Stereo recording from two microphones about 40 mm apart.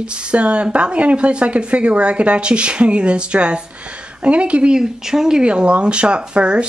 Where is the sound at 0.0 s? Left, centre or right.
Right.